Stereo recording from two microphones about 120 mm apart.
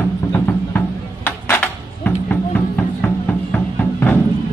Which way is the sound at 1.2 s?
15° left (ahead or behind).